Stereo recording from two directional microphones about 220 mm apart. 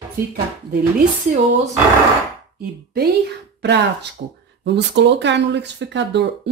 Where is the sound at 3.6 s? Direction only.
50° right (ahead or behind).